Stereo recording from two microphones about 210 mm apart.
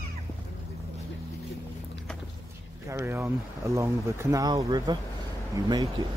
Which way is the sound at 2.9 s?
10° right (ahead or behind).